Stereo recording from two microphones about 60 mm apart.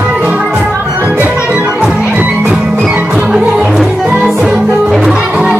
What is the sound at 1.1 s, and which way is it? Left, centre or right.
Music, right.